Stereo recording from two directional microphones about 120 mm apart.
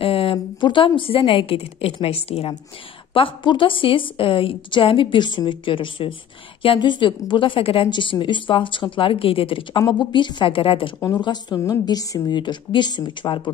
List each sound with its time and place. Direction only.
0.0 s a woman's voice: 50° left (ahead or behind)